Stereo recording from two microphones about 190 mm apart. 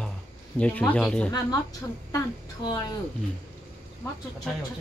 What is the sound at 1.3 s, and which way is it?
A woman's voice, 20° left (ahead or behind).